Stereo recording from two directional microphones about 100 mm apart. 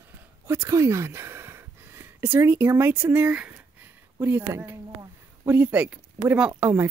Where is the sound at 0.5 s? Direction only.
30° right (ahead or behind); by 6.5 s 10° right (ahead or behind).